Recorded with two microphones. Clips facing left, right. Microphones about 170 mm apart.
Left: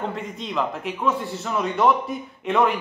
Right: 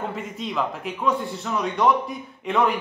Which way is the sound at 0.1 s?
Centre (ahead or behind).